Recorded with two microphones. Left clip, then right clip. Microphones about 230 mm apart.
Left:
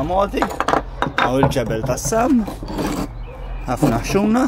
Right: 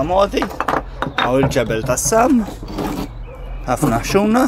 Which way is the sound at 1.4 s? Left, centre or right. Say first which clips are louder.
Right 1 dB; right.